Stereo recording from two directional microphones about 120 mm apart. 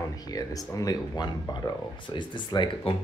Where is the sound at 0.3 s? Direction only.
30° left (ahead or behind).